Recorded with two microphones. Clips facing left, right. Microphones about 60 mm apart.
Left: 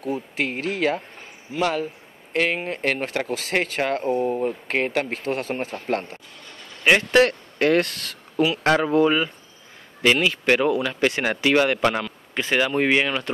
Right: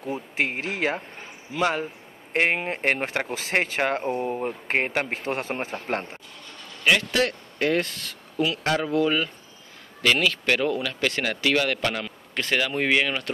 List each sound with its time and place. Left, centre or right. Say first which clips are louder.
0.0 s speech: left 1 dB; right
6.8 s speech: left 3 dB; left
7.2 s speech: left 7 dB; left
8.9 s speech: left 4 dB; left